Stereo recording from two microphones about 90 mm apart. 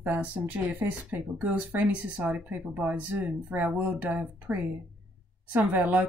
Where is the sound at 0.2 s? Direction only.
15° right (ahead or behind).